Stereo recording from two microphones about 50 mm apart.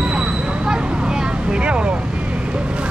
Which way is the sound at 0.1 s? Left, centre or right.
Centre.